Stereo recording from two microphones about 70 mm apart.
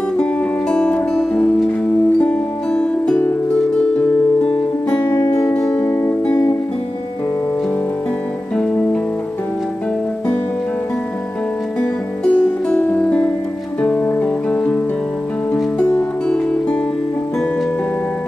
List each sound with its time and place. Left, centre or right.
0.2 s music: centre
1.3 s music: centre
2.2 s music: centre
4.8 s music: left
5.7 s music: left
11.8 s music: centre
13.8 s guitar: left
15.5 s music: left